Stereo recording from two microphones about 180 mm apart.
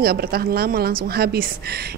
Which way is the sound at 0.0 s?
60° right (ahead or behind).